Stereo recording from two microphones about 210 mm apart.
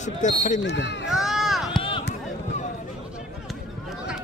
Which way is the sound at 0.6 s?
55° left (ahead or behind).